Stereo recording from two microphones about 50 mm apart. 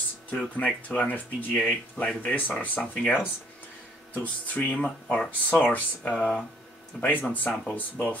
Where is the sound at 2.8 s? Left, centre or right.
Left.